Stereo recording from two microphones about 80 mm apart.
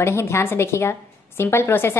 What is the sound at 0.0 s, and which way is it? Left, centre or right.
A woman's voice, left.